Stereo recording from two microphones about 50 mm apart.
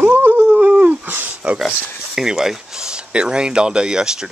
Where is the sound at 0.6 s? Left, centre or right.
Right.